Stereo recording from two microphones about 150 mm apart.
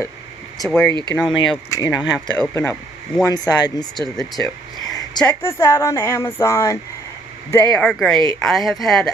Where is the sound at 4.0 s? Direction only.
Centre (ahead or behind).